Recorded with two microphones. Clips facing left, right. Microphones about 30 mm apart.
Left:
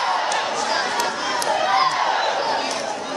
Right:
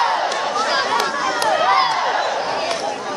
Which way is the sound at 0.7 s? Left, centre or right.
Right.